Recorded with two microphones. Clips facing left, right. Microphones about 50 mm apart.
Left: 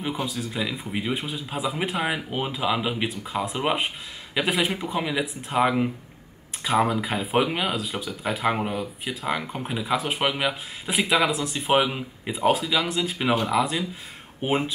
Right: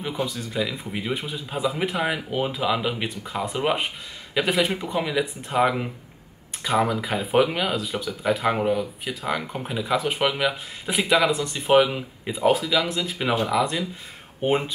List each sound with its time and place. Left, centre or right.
0.0 s speech: centre